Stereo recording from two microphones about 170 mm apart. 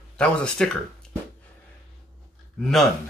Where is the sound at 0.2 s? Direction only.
5° left (ahead or behind).